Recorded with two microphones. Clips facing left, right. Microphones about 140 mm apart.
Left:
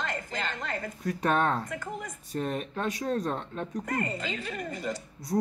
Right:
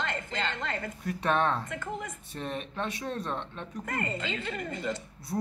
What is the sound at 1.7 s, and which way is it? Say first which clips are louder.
Speech: even; 20° right (ahead or behind).